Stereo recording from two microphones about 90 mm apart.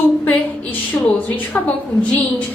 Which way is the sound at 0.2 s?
20° left (ahead or behind).